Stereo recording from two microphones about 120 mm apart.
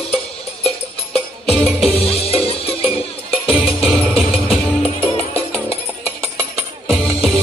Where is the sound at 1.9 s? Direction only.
55° left (ahead or behind).